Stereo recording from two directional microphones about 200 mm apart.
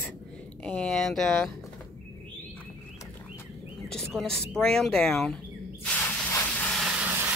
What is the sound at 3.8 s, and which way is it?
Bird, 5° left (ahead or behind).